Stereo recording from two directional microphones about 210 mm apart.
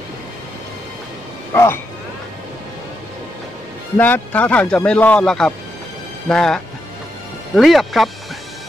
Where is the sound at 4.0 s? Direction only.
10° left (ahead or behind).